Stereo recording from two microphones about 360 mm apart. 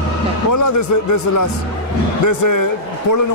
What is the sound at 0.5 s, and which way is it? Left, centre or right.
A man's voice, left.